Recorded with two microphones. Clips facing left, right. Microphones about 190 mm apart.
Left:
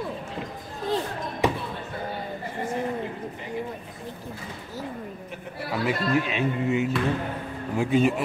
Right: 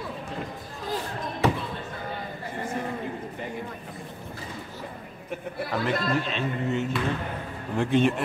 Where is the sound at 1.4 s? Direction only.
15° left (ahead or behind).